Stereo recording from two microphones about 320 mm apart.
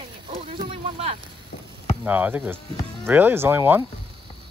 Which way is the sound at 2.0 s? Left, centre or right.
Centre.